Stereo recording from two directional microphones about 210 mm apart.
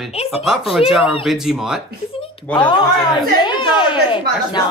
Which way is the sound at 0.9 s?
Centre (ahead or behind).